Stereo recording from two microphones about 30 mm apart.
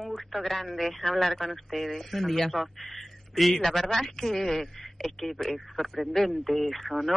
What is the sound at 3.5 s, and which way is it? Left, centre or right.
A man's voice, centre.